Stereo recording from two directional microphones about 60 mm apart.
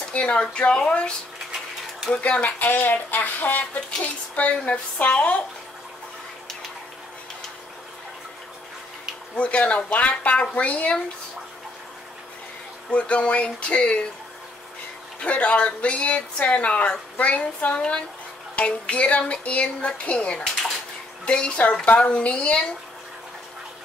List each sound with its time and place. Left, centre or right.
0.1 s speech: centre
2.2 s speech: left
9.3 s speech: centre
12.9 s speech: left
15.2 s speech: left